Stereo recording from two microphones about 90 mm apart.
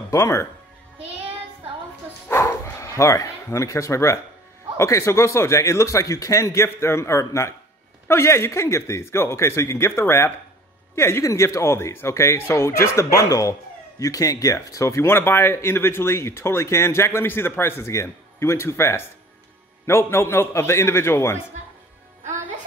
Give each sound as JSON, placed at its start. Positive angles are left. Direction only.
{"t": 0.1, "sound": "speech", "side_deg": 35}
{"t": 2.2, "sound": "bow-wow", "side_deg": 30}
{"t": 4.7, "sound": "speech", "side_deg": 35}